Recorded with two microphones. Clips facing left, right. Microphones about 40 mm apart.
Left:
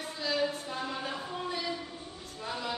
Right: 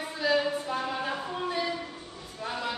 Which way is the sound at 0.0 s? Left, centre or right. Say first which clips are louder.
Right 5 dB; centre.